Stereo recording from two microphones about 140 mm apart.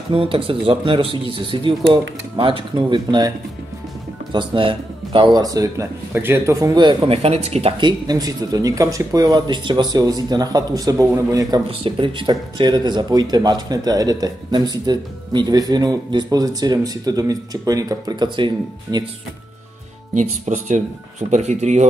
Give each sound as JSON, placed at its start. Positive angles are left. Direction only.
{"t": 0.1, "sound": "speech", "side_deg": -40}
{"t": 7.2, "sound": "speech", "side_deg": -50}
{"t": 7.8, "sound": "speech", "side_deg": -25}
{"t": 11.8, "sound": "speech", "side_deg": -35}
{"t": 20.2, "sound": "speech", "side_deg": -60}